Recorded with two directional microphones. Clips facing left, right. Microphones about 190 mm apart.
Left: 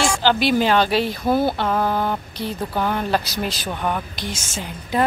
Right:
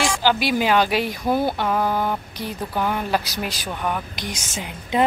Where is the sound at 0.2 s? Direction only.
10° right (ahead or behind).